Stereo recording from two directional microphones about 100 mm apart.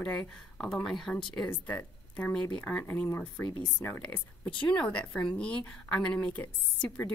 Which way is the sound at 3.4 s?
50° left (ahead or behind).